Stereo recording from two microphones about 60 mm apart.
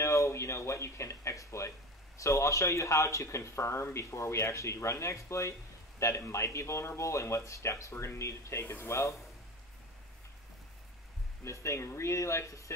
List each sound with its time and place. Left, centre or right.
0.0 s a sound: left
2.1 s speech: left
11.4 s speech: left